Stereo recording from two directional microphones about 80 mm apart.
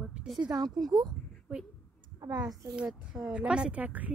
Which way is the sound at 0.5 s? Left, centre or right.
Right.